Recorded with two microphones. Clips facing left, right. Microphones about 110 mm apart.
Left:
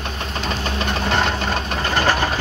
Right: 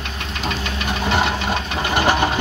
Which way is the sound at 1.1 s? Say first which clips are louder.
Right 2 dB; 10° right (ahead or behind).